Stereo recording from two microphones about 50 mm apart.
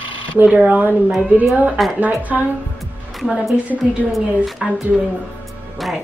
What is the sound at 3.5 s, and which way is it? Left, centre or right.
Speech, right.